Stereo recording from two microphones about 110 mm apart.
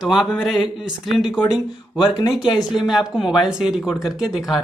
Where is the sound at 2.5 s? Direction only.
5° right (ahead or behind).